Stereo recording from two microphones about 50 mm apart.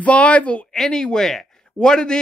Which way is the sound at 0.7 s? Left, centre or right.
Centre.